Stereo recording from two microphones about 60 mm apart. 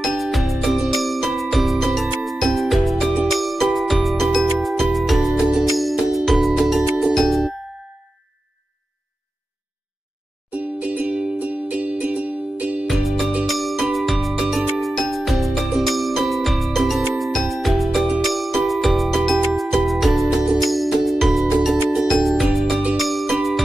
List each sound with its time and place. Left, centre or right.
0.2 s music: centre
10.5 s music: right
12.8 s music: centre
14.3 s music: centre
14.8 s music: centre